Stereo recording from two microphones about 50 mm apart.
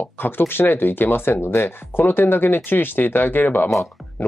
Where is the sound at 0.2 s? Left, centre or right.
Left.